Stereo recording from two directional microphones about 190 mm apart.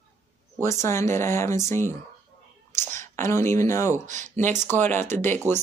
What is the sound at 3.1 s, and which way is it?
Speech, 15° left (ahead or behind).